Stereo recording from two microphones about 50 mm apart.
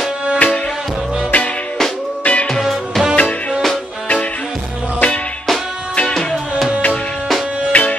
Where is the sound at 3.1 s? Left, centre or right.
Left.